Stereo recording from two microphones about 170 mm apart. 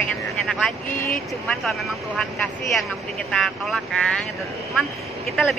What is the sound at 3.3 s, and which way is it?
Speech, 5° left (ahead or behind).